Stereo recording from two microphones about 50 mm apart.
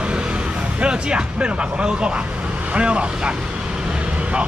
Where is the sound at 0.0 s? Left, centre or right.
Right.